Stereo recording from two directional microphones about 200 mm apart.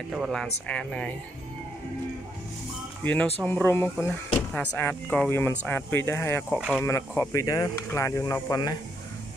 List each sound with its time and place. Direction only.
0.1 s speech: centre (ahead or behind)
3.0 s speech: 5° left (ahead or behind)